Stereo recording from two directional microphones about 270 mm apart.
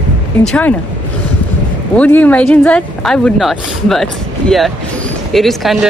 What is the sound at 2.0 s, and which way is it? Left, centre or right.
Speech, centre.